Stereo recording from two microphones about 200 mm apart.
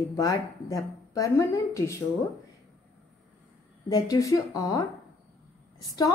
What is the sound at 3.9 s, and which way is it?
Speech, 20° left (ahead or behind).